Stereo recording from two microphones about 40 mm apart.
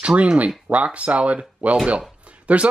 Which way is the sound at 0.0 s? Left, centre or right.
Right.